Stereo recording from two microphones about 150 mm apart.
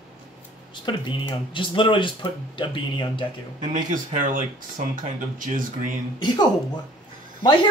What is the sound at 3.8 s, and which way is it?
Speech, 60° right (ahead or behind).